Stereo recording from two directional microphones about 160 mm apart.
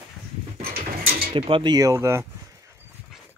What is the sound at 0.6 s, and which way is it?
Mechanisms, 70° right (ahead or behind).